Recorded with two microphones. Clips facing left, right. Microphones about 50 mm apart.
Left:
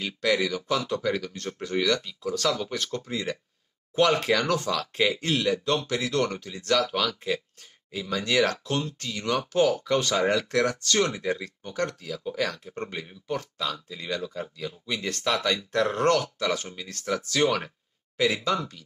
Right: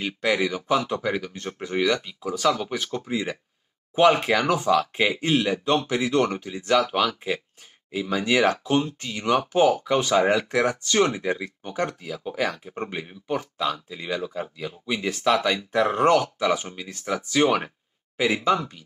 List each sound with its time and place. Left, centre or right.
0.0 s speech: right